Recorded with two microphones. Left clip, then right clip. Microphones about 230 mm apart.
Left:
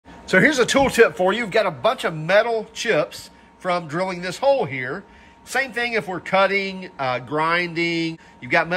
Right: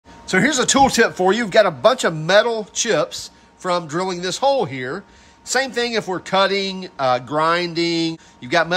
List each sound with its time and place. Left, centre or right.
0.3 s speech: centre